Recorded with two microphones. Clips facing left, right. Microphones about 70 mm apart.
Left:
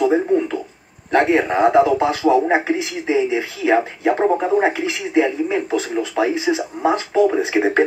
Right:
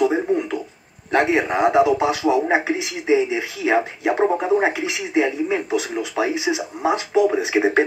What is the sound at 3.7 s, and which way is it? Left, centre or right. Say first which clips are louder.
Speech: left 3 dB; centre.